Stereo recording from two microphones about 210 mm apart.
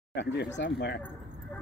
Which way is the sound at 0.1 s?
55° left (ahead or behind).